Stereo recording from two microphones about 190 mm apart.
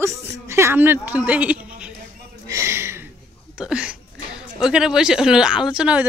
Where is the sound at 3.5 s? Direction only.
5° right (ahead or behind).